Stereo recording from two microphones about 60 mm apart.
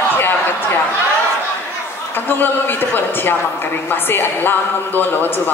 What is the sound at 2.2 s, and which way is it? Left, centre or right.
A woman's voice, left.